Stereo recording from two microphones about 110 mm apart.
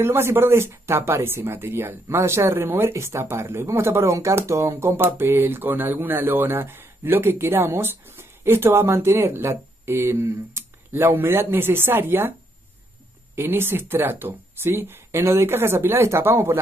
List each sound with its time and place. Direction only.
0.0 s speech: 20° right (ahead or behind)
13.4 s speech: 20° right (ahead or behind)